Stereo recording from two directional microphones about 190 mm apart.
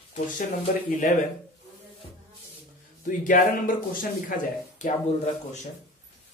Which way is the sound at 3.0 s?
45° left (ahead or behind).